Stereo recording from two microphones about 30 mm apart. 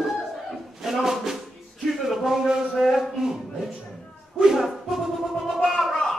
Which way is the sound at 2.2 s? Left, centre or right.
Centre.